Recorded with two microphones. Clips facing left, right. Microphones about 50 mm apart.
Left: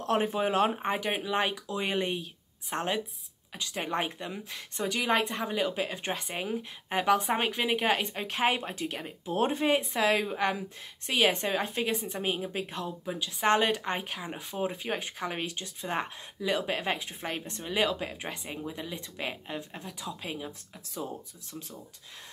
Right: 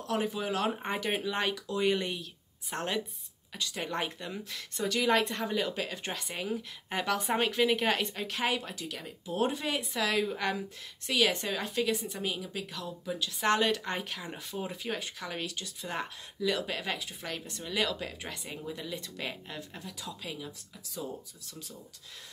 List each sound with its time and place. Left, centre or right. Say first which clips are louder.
0.0 s a woman's voice: left 5 dB; left